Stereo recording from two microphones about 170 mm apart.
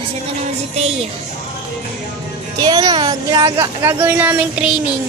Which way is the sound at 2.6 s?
25° right (ahead or behind).